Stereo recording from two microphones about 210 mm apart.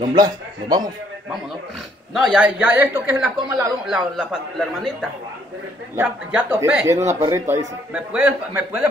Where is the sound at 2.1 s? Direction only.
Centre (ahead or behind).